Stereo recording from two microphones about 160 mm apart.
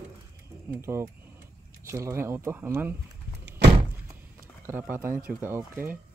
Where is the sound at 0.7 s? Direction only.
15° right (ahead or behind).